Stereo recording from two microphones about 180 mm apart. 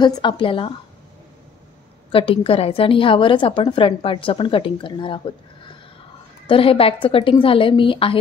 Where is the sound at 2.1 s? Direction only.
30° left (ahead or behind).